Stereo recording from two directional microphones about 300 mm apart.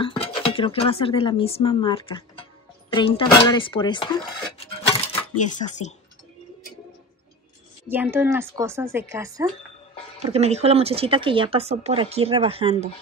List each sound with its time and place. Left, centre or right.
0.0 s speech: centre
5.4 s speech: left
7.9 s speech: centre
10.2 s speech: right